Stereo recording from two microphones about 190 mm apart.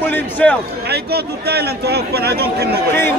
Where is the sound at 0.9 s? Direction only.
55° right (ahead or behind).